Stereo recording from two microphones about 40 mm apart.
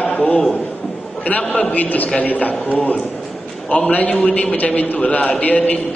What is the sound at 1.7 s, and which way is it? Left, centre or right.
A man's voice, left.